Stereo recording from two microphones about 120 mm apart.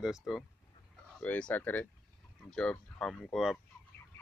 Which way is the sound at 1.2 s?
10° left (ahead or behind).